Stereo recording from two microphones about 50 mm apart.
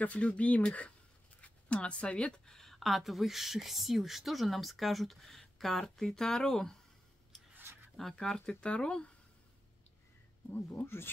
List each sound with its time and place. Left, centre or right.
0.0 s speech: left; by 6.8 s centre
7.5 s a sound: right
8.0 s speech: centre